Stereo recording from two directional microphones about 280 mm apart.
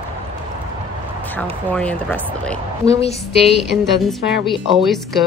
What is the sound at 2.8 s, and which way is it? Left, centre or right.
Speech, left.